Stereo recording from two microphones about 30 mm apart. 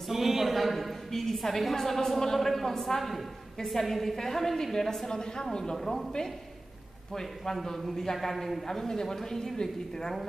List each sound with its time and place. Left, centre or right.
0.1 s a sound: centre
1.1 s a woman's voice: centre
3.0 s a man's voice: centre
5.0 s a woman's voice: left
7.8 s a man's voice: centre
8.6 s a woman's voice: centre